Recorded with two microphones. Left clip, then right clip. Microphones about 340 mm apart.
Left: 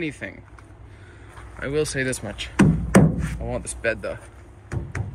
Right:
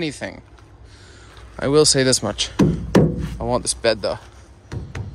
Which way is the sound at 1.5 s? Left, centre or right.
Centre.